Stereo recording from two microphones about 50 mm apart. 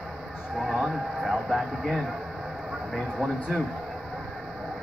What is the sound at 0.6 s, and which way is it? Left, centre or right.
Speech, centre.